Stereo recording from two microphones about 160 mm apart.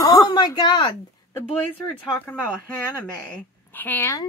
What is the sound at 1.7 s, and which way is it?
Speech, 10° left (ahead or behind).